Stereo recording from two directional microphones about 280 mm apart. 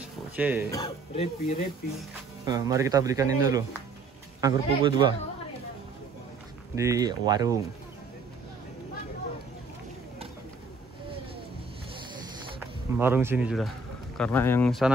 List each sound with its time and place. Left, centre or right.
0.0 s a sound: centre
0.7 s speech: centre
2.4 s speech: centre
6.7 s speech: centre
12.9 s speech: centre